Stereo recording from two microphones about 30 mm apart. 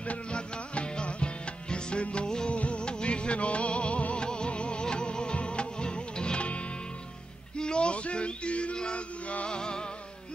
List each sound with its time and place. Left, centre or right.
0.0 s music: left
0.4 s music: left
2.2 s music: left
2.5 s music: left
4.1 s music: left
6.4 s music: left
7.5 s a sound: left
8.9 s music: left
9.5 s music: left